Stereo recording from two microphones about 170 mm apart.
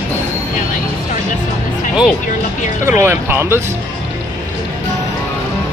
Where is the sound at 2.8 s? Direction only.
15° right (ahead or behind).